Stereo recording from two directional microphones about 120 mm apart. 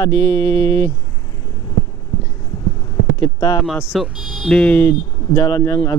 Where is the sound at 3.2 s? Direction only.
30° left (ahead or behind).